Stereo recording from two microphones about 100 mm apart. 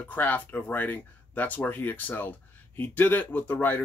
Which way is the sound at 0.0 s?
15° left (ahead or behind).